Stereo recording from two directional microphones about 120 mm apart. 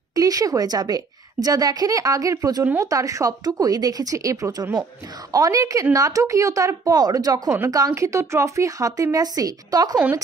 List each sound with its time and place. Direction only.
0.1 s a woman's voice: 30° right (ahead or behind)